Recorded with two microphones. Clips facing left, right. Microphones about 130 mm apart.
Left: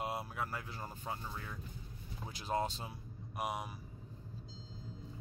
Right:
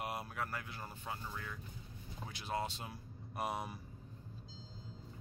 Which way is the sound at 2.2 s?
40° left (ahead or behind).